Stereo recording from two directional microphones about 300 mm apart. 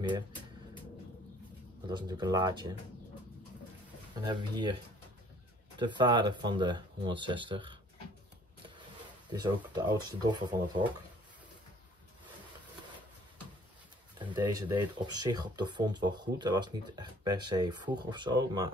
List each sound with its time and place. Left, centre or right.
1.9 s speech: centre
4.1 s speech: centre
5.8 s speech: centre
9.3 s speech: centre
14.1 s speech: centre